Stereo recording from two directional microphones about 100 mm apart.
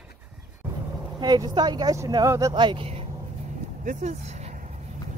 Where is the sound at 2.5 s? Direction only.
55° right (ahead or behind).